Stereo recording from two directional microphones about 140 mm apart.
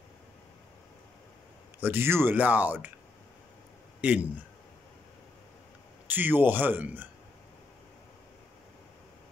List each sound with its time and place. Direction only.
1.8 s speech: 15° right (ahead or behind)
4.0 s a man's voice: 10° right (ahead or behind)
6.0 s speech: 15° right (ahead or behind)